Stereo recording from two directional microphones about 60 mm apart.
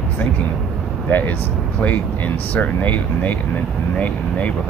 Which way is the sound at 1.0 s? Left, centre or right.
Left.